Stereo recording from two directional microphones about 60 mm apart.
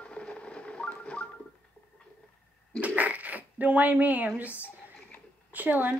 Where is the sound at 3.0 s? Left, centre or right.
Right.